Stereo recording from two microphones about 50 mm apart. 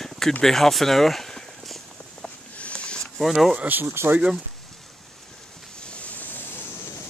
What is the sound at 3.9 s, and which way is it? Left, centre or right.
Speech, right.